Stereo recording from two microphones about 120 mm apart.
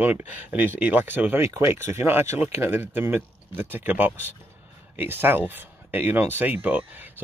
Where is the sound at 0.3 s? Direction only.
15° right (ahead or behind).